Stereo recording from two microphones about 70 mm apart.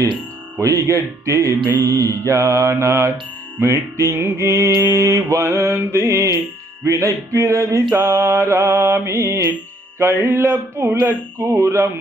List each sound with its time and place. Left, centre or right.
0.6 s mantra: right
11.1 s mantra: right